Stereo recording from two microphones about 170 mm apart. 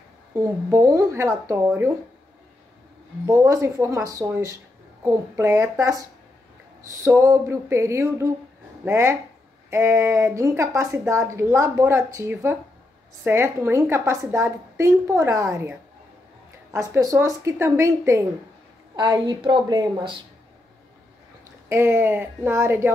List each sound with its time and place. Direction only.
0.3 s speech: 15° right (ahead or behind)
3.3 s a woman's voice: 20° right (ahead or behind)
21.6 s speech: 15° right (ahead or behind)